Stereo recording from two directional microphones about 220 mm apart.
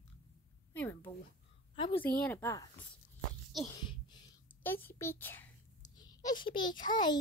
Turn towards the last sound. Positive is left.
turn(degrees=20)  # may be behind; listen again after turning